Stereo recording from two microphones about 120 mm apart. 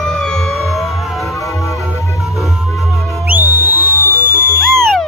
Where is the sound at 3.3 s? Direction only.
15° right (ahead or behind).